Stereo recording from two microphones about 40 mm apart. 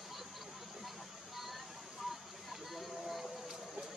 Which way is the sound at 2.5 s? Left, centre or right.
Centre.